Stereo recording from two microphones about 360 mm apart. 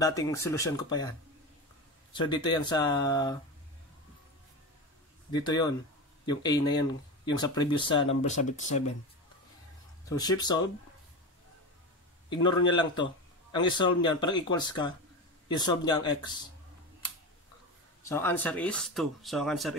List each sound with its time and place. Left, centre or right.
0.0 s speech: centre
2.1 s speech: centre
5.3 s speech: centre
10.0 s speech: centre
12.3 s speech: centre
18.0 s speech: centre